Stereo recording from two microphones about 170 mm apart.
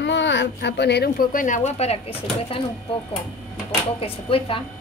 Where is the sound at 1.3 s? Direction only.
50° left (ahead or behind).